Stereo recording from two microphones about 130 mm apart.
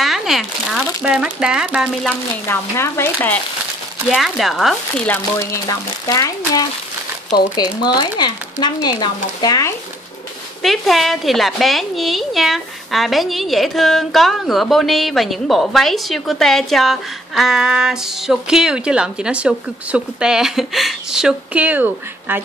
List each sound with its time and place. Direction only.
0.0 s speech: centre (ahead or behind)
2.4 s speech: 20° left (ahead or behind)
4.1 s a woman's voice: centre (ahead or behind)
5.0 s speech: 15° left (ahead or behind)
5.7 s speech: 25° left (ahead or behind)
10.6 s a woman's voice: centre (ahead or behind)